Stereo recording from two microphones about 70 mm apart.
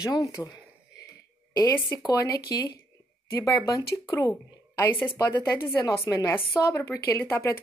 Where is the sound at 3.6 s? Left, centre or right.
Left.